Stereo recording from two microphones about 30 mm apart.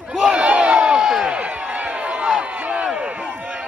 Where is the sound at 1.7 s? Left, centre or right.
Right.